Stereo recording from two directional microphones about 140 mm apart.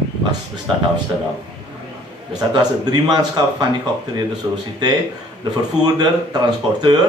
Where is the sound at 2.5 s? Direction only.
30° right (ahead or behind).